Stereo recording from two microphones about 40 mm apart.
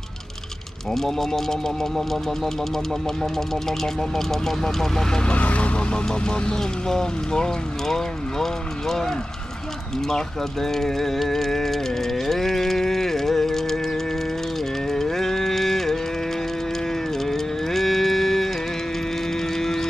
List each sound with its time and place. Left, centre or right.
0.9 s speech: centre
5.2 s speech: left; by 9.1 s centre
10.0 s a sound: centre
14.9 s music: centre
17.2 s a sound: centre
19.5 s music: centre